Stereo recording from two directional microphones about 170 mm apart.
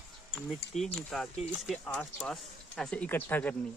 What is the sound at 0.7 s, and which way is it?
Speech, centre (ahead or behind).